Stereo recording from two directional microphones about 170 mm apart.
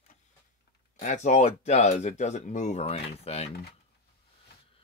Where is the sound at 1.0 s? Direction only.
45° left (ahead or behind).